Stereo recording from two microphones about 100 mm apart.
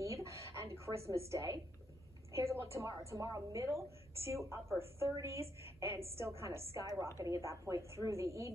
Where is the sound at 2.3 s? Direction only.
30° right (ahead or behind).